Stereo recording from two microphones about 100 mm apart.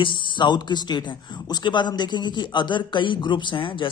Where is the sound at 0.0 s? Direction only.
55° left (ahead or behind).